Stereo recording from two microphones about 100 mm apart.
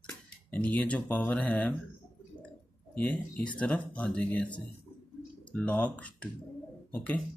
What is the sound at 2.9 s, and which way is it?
Speech, 15° left (ahead or behind).